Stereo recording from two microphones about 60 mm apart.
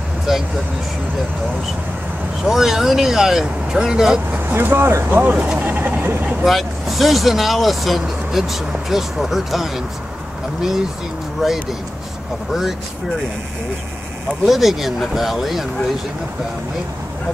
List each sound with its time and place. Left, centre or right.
0.3 s speech: centre
2.4 s speech: centre
4.5 s speech: right
5.2 s speech: right
6.4 s speech: centre
11.4 s speech: centre
14.4 s speech: centre